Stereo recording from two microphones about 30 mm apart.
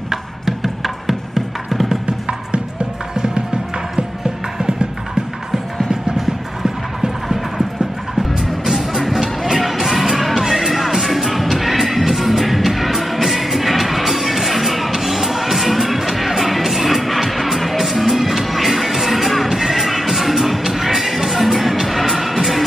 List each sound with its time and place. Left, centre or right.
0.1 s music: centre
5.9 s clip-clop: centre
8.2 s music: centre